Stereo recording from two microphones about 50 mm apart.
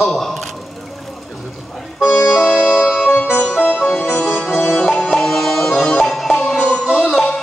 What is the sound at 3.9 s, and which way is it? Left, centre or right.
Music, centre.